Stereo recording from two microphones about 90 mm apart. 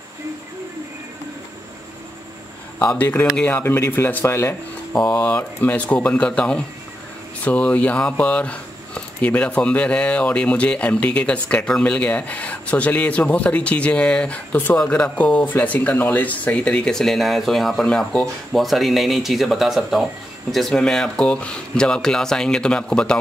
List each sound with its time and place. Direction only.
2.9 s speech: 20° left (ahead or behind)
5.1 s speech: 15° left (ahead or behind)